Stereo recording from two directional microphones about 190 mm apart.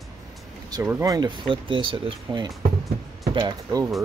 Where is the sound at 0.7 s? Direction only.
15° right (ahead or behind).